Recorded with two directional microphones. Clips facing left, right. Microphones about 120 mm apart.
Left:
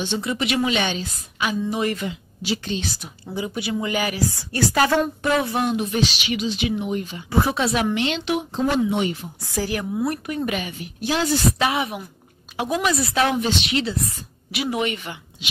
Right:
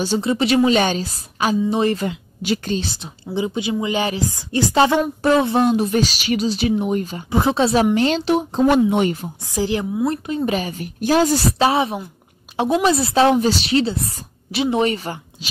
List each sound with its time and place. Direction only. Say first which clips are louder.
0.0 s a woman's voice: right 6 dB; 30° right (ahead or behind)
2.0 s speech: right 4 dB; 50° right (ahead or behind)
2.8 s a woman's voice: right 2 dB; 25° right (ahead or behind); by 7.2 s 45° right (ahead or behind)
7.2 s a woman's voice: right 3 dB; 20° right (ahead or behind); by 8.6 s 35° right (ahead or behind)
8.6 s speech: right 5 dB; 55° right (ahead or behind)
9.4 s a woman's voice: right 4 dB; 15° right (ahead or behind); by 15.1 s 35° right (ahead or behind)